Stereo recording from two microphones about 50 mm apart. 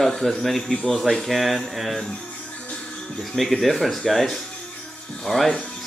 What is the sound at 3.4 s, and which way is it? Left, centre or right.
Speech, centre.